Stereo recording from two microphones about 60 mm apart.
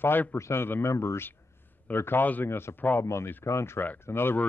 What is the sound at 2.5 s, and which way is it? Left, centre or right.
Speech, left.